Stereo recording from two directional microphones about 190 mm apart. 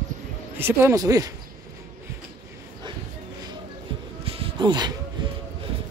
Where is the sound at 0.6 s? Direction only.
10° right (ahead or behind).